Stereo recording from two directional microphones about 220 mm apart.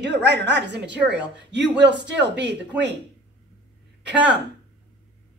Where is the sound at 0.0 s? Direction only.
50° right (ahead or behind).